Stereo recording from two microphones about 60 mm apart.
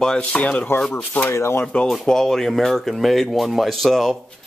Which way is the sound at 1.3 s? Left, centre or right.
Left.